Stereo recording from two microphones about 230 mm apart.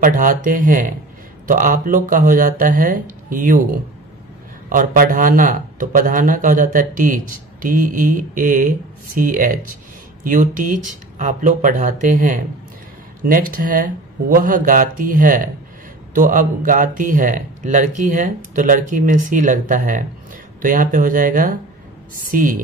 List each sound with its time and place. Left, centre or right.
0.0 s speech: right
4.6 s speech: right